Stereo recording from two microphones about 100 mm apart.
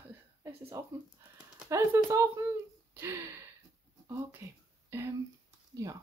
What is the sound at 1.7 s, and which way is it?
Speech, 30° right (ahead or behind).